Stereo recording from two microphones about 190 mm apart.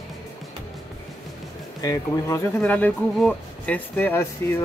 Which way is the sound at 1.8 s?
15° left (ahead or behind).